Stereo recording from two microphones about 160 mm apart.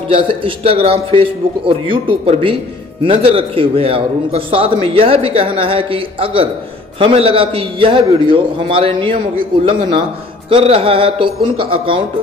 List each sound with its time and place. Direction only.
0.1 s a man's voice: 35° right (ahead or behind)